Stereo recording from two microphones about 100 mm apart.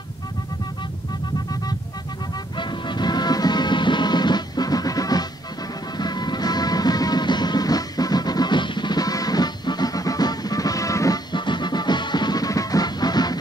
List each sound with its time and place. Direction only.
2.5 s music: 50° left (ahead or behind); by 11.1 s 35° left (ahead or behind)
11.3 s music: 50° left (ahead or behind)